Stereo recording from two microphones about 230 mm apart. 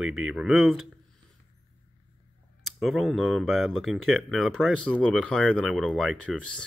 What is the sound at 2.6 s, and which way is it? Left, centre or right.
Speech, centre.